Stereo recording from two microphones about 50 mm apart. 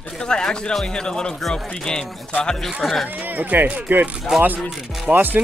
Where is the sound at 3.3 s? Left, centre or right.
Right.